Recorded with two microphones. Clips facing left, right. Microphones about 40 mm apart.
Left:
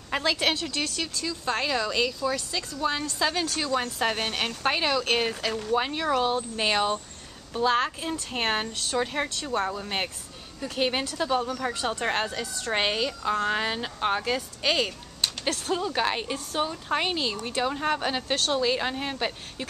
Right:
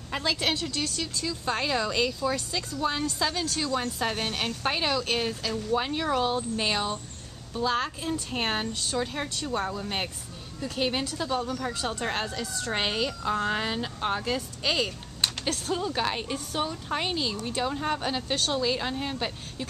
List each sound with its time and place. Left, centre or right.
0.1 s speech: centre
1.1 s speech: centre
3.3 s speech: centre
5.7 s speech: centre
7.8 s speech: centre
9.3 s speech: centre
18.3 s speech: centre
18.6 s speech: centre